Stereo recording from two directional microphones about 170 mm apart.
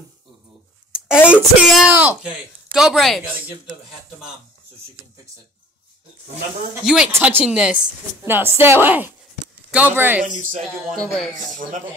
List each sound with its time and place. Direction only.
0.9 s a sound: 5° right (ahead or behind)
1.3 s speech: 5° right (ahead or behind)
6.8 s a woman's voice: centre (ahead or behind)
10.2 s speech: 50° right (ahead or behind)